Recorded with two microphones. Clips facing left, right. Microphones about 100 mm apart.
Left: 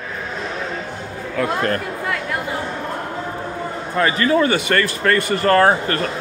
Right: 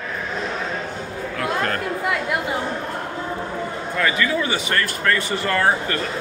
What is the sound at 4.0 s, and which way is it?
Speech, 35° left (ahead or behind).